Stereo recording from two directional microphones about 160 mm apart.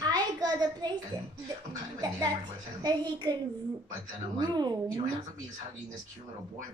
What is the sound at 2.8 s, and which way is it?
Speech, 25° right (ahead or behind).